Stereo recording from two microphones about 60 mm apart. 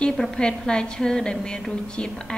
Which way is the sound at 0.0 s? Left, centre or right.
Centre.